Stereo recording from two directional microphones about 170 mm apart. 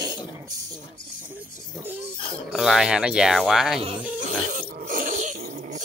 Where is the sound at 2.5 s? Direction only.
5° right (ahead or behind).